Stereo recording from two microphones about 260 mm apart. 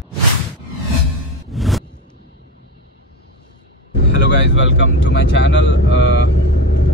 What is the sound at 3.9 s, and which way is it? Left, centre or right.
Speech, left.